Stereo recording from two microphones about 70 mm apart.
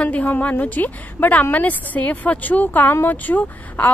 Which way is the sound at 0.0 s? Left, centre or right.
Left.